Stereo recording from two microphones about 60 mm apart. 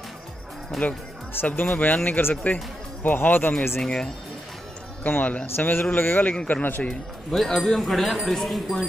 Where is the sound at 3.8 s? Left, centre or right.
Centre.